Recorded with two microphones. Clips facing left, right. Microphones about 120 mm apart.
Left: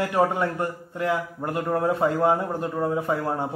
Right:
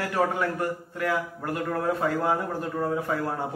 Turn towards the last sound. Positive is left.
turn(degrees=25)  # may be behind; listen again after turning